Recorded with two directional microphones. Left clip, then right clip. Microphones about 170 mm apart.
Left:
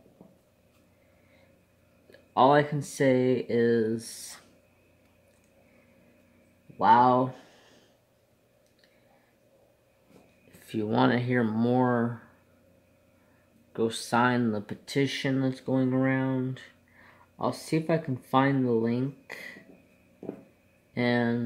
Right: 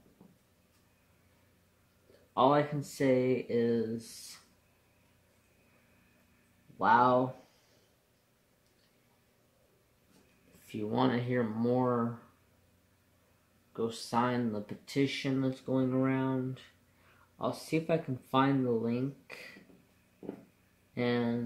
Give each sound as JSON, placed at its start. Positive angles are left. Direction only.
{"t": 2.3, "sound": "speech", "side_deg": 45}
{"t": 6.8, "sound": "speech", "side_deg": 40}
{"t": 10.7, "sound": "speech", "side_deg": 50}
{"t": 14.1, "sound": "speech", "side_deg": 45}
{"t": 17.4, "sound": "speech", "side_deg": 40}
{"t": 20.9, "sound": "speech", "side_deg": 40}